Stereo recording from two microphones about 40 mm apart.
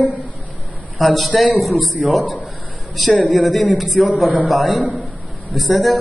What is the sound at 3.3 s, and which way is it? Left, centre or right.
Speech, centre.